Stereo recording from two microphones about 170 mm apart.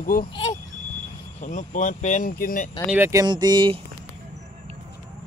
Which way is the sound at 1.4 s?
50° left (ahead or behind).